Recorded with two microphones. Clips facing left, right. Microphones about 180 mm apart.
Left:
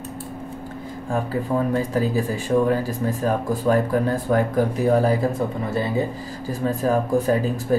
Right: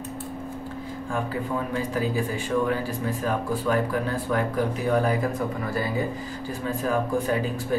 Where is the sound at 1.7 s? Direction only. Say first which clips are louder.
Left 5 dB; 40° left (ahead or behind).